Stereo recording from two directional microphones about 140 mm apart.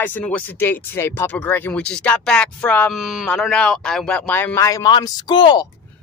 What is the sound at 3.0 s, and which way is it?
Speech, 5° right (ahead or behind).